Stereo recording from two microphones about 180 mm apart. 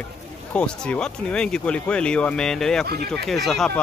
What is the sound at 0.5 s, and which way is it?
Speech, 5° left (ahead or behind).